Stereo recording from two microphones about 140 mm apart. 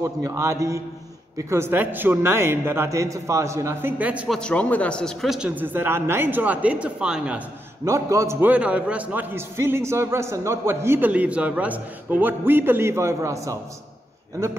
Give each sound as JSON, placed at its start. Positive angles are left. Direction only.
{"t": 0.0, "sound": "a man's voice", "side_deg": -20}
{"t": 4.3, "sound": "a man's voice", "side_deg": 5}
{"t": 7.8, "sound": "a man's voice", "side_deg": -20}